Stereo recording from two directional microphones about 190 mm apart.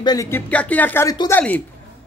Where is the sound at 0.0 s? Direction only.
20° left (ahead or behind).